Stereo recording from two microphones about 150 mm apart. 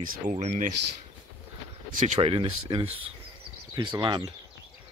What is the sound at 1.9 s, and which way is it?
Speech, 60° right (ahead or behind).